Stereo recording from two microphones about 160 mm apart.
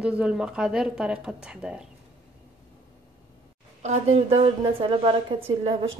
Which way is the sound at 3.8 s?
45° right (ahead or behind).